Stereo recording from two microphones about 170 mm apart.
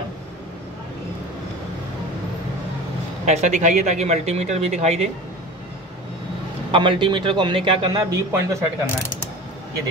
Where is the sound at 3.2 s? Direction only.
40° right (ahead or behind).